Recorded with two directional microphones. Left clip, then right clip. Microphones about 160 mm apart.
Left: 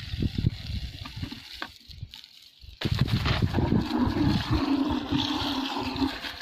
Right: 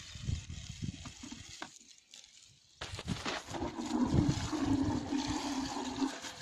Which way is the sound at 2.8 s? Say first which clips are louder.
Left 12 dB; 60° left (ahead or behind).